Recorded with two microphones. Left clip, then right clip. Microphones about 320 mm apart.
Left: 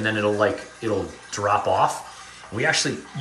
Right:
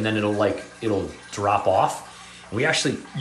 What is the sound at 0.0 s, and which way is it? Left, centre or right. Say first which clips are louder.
Speech: left 1 dB; centre.